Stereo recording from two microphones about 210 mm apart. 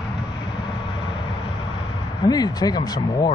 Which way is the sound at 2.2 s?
20° left (ahead or behind).